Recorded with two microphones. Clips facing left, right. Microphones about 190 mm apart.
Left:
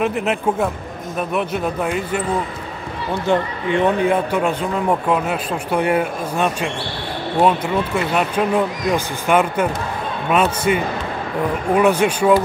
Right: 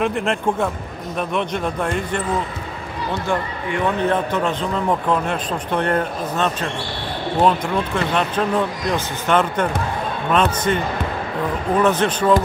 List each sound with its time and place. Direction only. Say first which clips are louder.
0.0 s speech: left 1 dB; 5° left (ahead or behind)
3.3 s speech: left 7 dB; 20° left (ahead or behind)
4.0 s a man's voice: left 2 dB; 10° left (ahead or behind)